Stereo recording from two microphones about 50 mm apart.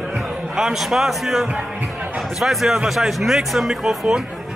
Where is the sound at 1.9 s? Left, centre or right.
Right.